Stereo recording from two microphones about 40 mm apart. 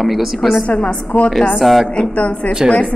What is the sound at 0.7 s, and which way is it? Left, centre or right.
Speech, left.